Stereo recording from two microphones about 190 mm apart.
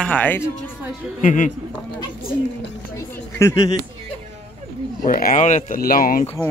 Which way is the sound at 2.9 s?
15° left (ahead or behind).